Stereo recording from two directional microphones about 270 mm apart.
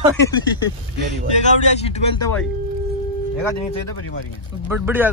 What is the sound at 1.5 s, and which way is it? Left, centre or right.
Speech, left.